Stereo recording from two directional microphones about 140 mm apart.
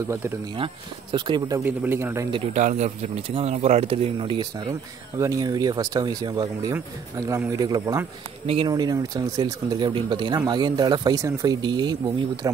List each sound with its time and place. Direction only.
1.1 s speech: 30° right (ahead or behind)
1.6 s a man's voice: 15° right (ahead or behind)
2.5 s speech: 55° right (ahead or behind); by 12.0 s 30° right (ahead or behind)